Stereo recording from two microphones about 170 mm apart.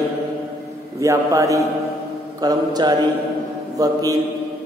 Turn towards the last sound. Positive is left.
turn(degrees=-20)  # may be behind; listen again after turning